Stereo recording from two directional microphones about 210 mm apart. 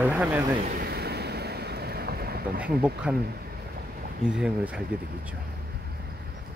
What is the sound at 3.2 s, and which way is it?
Speech, 45° right (ahead or behind).